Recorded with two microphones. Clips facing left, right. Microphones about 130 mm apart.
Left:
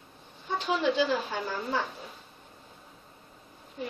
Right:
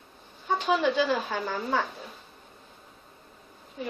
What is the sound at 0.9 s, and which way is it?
Speech, 55° right (ahead or behind).